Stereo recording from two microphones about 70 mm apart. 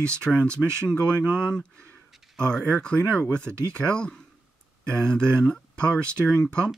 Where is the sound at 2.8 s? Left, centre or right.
Centre.